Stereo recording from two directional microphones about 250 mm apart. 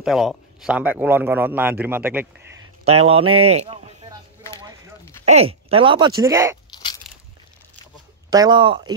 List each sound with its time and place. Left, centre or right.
0.0 s speech: centre
2.8 s speech: right
5.2 s speech: right
6.7 s a sound: centre
8.3 s speech: centre